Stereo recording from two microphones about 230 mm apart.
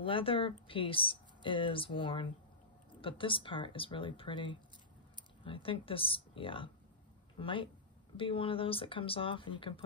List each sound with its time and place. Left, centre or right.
0.0 s speech: left